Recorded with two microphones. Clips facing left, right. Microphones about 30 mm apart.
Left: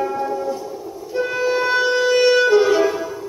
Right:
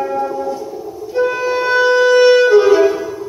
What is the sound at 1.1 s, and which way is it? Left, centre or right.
Music, centre.